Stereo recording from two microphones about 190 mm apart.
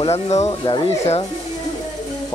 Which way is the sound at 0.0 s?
35° left (ahead or behind).